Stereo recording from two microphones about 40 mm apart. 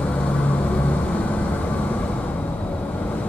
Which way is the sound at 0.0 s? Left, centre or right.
Left.